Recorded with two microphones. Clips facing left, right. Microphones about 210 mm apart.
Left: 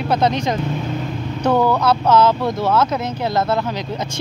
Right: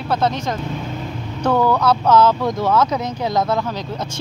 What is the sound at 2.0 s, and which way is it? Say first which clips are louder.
Speech: even; 10° right (ahead or behind).